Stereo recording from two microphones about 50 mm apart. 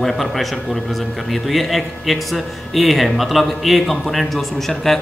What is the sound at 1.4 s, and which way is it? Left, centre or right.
A man's voice, centre.